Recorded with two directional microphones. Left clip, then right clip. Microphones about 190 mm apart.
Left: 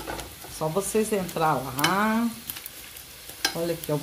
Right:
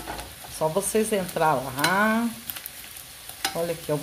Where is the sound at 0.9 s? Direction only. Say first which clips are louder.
Right 1 dB; 10° right (ahead or behind).